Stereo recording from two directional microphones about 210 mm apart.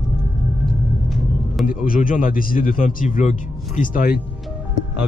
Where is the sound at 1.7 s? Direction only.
40° left (ahead or behind).